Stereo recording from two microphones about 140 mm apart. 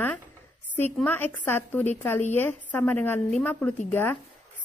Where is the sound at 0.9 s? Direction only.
15° left (ahead or behind).